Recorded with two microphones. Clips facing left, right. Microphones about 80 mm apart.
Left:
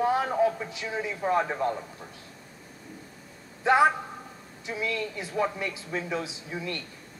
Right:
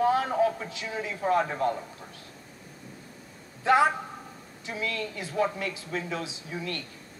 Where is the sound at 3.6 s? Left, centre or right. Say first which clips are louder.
Left 1 dB; left.